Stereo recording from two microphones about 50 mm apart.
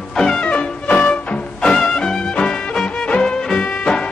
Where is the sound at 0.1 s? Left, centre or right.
Centre.